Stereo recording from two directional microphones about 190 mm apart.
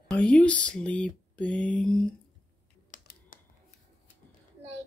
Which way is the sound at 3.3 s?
45° left (ahead or behind).